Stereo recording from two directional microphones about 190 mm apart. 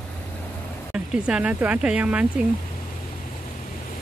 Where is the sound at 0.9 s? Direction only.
5° right (ahead or behind).